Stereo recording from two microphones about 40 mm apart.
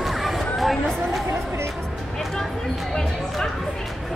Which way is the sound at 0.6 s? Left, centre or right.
Centre.